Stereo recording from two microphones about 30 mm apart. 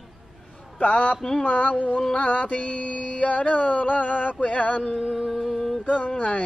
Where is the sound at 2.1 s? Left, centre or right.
Left.